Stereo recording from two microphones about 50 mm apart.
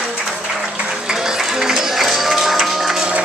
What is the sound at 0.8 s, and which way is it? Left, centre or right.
Music, centre.